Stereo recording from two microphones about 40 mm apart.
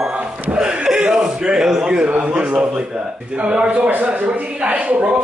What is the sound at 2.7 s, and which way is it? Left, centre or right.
Speech, centre.